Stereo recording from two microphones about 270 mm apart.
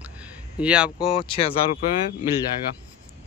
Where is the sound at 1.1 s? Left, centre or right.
Centre.